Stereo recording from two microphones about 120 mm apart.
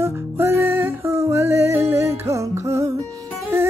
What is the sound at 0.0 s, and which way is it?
Music, 20° right (ahead or behind).